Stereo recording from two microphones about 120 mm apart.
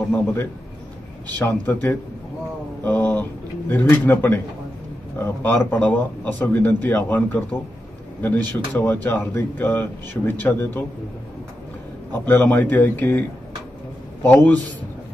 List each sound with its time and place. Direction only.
0.1 s a man's voice: 20° left (ahead or behind)
12.1 s speech: 15° left (ahead or behind)
14.2 s speech: 15° left (ahead or behind)